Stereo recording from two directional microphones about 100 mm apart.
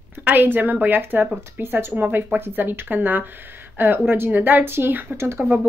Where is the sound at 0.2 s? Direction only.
20° right (ahead or behind).